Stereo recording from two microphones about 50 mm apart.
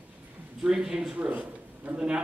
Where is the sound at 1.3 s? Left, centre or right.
Right.